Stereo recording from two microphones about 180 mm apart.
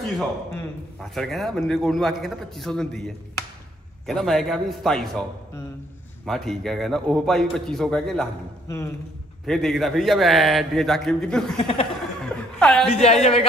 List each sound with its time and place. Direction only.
0.9 s a man's voice: centre (ahead or behind)
4.0 s a man's voice: centre (ahead or behind)
6.2 s a man's voice: centre (ahead or behind)
8.6 s speech: 15° left (ahead or behind)
9.5 s a man's voice: centre (ahead or behind)
11.6 s a woman's voice: 30° left (ahead or behind)
12.5 s a woman's voice: 5° left (ahead or behind)
12.9 s a woman's voice: 35° left (ahead or behind)